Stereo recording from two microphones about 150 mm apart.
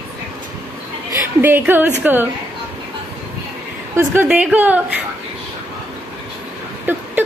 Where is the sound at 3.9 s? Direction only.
10° right (ahead or behind).